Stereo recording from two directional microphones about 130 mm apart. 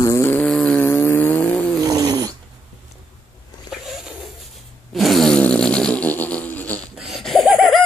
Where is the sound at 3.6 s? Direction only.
5° right (ahead or behind).